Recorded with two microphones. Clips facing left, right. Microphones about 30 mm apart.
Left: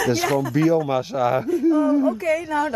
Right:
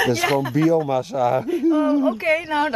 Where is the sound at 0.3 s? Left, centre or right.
Right.